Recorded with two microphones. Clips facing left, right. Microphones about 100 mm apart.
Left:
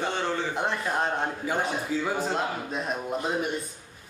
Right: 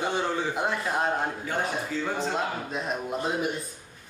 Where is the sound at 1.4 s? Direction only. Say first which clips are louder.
Left 2 dB; 10° left (ahead or behind).